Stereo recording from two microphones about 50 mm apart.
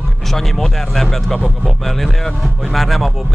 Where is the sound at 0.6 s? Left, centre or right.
Centre.